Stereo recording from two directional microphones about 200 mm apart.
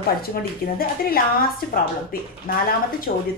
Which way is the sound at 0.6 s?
45° left (ahead or behind).